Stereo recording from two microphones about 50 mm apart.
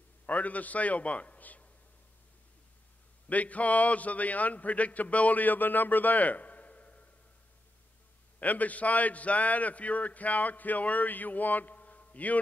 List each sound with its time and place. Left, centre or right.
0.3 s a man's voice: left
3.3 s a man's voice: left
8.4 s a man's voice: left